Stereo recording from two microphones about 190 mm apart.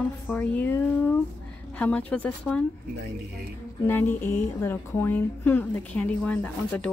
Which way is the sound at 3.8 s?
10° left (ahead or behind).